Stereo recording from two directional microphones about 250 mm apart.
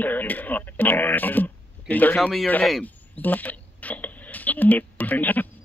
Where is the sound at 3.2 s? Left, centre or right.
Centre.